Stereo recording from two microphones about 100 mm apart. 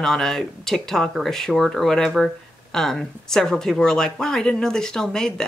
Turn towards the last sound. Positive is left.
turn(degrees=5)  # may be behind; listen again after turning